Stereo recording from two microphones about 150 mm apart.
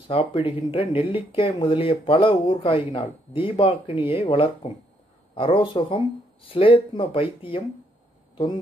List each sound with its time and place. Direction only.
0.1 s speech: 40° left (ahead or behind)